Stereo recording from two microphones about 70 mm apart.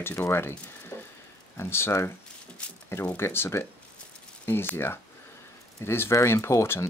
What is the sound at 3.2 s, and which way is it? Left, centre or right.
Speech, left.